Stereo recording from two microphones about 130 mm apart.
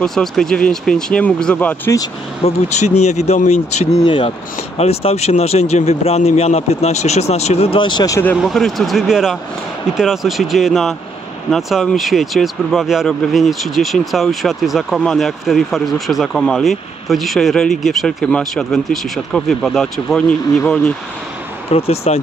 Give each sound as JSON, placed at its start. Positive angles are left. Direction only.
{"t": 0.0, "sound": "speech", "side_deg": 5}
{"t": 2.4, "sound": "speech", "side_deg": 60}
{"t": 4.0, "sound": "speech", "side_deg": 40}
{"t": 4.7, "sound": "speech", "side_deg": 50}
{"t": 8.4, "sound": "speech", "side_deg": 0}
{"t": 21.7, "sound": "speech", "side_deg": 50}